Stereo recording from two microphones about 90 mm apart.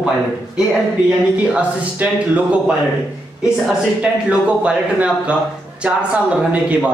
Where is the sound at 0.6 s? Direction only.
10° right (ahead or behind).